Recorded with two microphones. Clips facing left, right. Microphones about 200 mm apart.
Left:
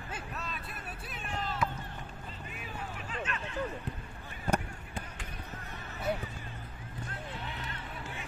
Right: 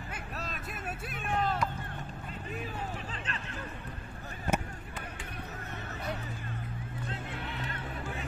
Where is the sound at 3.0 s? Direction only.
35° right (ahead or behind).